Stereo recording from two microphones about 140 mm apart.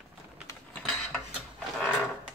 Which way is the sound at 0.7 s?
5° left (ahead or behind).